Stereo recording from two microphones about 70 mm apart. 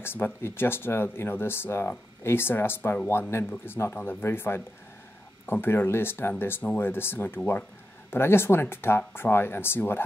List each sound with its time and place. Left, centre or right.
0.0 s speech: left